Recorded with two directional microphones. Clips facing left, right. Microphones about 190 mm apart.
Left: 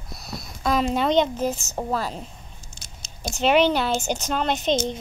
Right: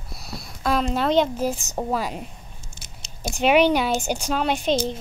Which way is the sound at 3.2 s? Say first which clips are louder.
Right 1 dB; 10° right (ahead or behind).